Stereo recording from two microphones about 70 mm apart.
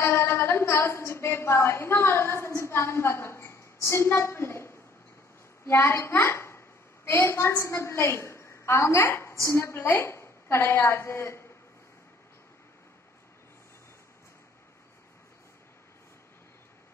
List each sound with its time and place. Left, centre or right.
0.0 s a woman's voice: left